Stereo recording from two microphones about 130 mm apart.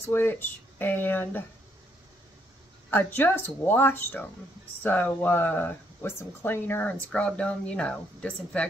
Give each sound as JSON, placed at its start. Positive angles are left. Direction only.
{"t": 0.0, "sound": "speech", "side_deg": 20}
{"t": 2.9, "sound": "speech", "side_deg": 15}